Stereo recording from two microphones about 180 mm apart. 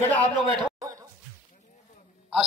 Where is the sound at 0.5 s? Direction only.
20° right (ahead or behind).